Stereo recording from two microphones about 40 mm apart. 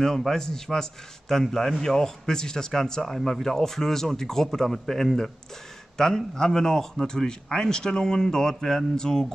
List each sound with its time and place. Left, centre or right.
0.0 s speech: centre